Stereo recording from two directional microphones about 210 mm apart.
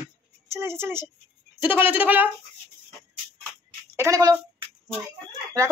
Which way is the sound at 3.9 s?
15° right (ahead or behind).